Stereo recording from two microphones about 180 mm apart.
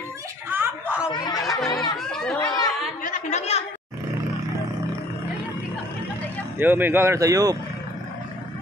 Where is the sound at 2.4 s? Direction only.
20° left (ahead or behind).